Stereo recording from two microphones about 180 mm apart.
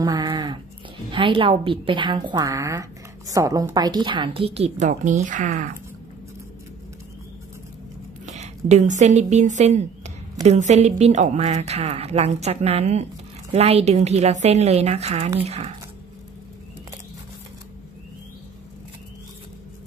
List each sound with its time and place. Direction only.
0.0 s a sound: 20° right (ahead or behind)
1.1 s a woman's voice: 30° right (ahead or behind); by 5.7 s 45° right (ahead or behind)
8.3 s a woman's voice: 40° right (ahead or behind)